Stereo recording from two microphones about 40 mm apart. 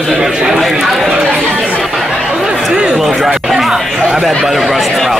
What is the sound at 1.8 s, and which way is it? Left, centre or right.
Chatter, centre.